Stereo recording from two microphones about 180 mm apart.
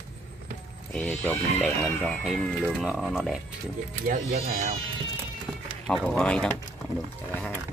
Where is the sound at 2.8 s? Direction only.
Centre (ahead or behind).